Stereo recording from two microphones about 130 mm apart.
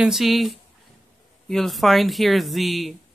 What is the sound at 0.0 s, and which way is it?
Speech, centre (ahead or behind).